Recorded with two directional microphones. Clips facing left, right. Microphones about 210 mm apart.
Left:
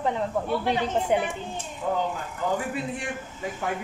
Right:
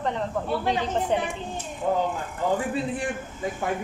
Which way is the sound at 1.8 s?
30° right (ahead or behind).